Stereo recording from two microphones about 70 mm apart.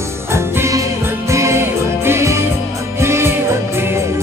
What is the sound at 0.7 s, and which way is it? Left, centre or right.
Music, right.